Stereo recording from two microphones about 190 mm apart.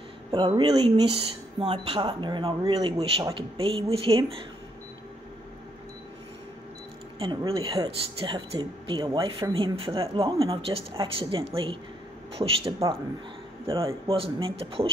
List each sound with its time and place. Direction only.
0.3 s speech: 25° right (ahead or behind)
7.2 s speech: 30° right (ahead or behind)
13.7 s speech: 30° right (ahead or behind)